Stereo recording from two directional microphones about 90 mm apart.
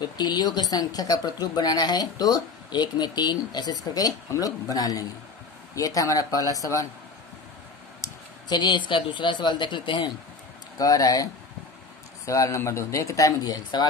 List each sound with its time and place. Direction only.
0.2 s a woman's voice: 50° left (ahead or behind)
3.9 s speech: 45° left (ahead or behind)
8.5 s speech: 55° left (ahead or behind)
10.8 s speech: 40° left (ahead or behind)
12.3 s speech: 35° left (ahead or behind)